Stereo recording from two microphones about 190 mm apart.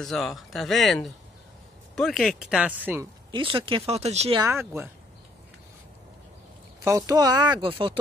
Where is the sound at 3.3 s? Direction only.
25° right (ahead or behind).